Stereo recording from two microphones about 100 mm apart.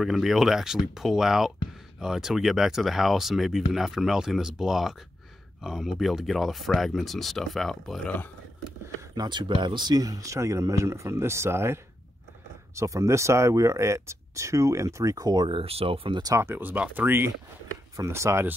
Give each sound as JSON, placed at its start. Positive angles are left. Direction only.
{"t": 0.0, "sound": "speech", "side_deg": -5}
{"t": 9.1, "sound": "speech", "side_deg": -45}
{"t": 15.6, "sound": "speech", "side_deg": -75}
{"t": 16.3, "sound": "speech", "side_deg": -20}